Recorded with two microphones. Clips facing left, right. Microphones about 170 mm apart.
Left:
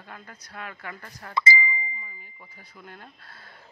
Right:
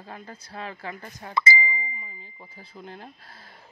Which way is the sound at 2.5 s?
25° right (ahead or behind).